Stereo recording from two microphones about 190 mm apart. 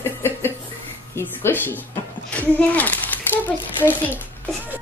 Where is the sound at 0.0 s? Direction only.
10° left (ahead or behind).